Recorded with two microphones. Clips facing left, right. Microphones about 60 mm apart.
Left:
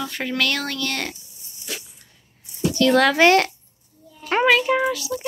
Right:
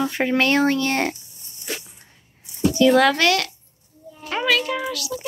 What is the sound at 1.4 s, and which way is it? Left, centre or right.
Dog, right.